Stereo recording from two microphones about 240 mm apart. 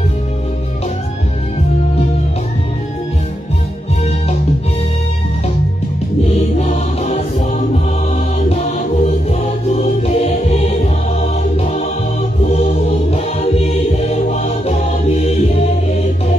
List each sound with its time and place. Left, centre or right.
6.2 s music: left